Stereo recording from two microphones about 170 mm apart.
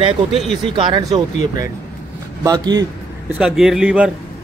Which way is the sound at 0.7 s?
30° right (ahead or behind).